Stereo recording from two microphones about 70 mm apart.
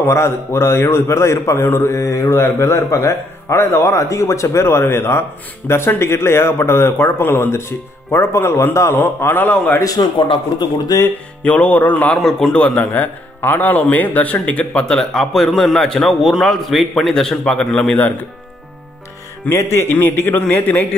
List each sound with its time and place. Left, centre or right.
0.0 s a man's voice: left
10.0 s speech: left
11.4 s music: centre
12.2 s speech: centre
19.5 s a man's voice: left
20.3 s music: left